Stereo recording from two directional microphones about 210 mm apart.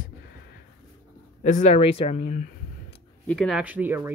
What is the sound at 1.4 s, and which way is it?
Speech, 35° left (ahead or behind).